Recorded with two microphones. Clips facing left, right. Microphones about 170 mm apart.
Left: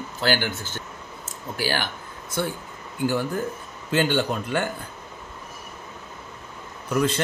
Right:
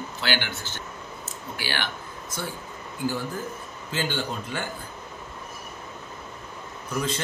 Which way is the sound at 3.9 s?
60° left (ahead or behind).